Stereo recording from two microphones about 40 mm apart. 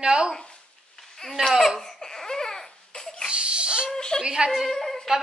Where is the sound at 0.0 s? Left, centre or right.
Right.